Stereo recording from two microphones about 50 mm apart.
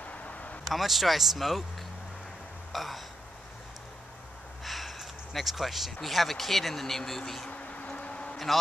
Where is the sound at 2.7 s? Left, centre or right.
Centre.